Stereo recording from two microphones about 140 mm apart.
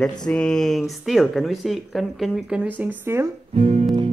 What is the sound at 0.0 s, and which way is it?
Speech, 5° left (ahead or behind).